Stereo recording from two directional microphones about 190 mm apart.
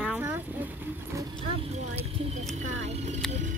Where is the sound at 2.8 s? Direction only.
35° right (ahead or behind).